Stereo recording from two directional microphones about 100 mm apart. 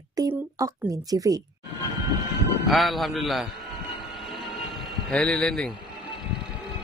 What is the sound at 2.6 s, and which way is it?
Speech, centre (ahead or behind).